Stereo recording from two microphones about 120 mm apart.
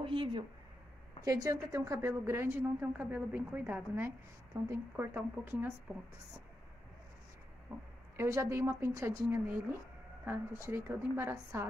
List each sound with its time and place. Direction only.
0.0 s speech: 45° right (ahead or behind)
1.2 s a woman's voice: 25° right (ahead or behind)
8.2 s a woman's voice: 20° right (ahead or behind)